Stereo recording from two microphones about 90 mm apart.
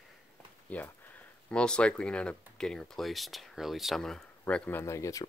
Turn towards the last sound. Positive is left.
turn(degrees=35)  # may be behind; listen again after turning